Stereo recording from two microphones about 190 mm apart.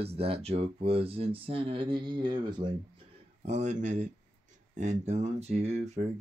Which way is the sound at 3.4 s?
35° right (ahead or behind).